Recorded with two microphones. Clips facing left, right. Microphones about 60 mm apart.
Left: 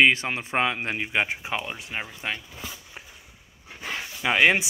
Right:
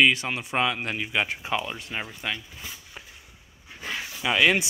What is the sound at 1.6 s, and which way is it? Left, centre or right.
Speech, centre.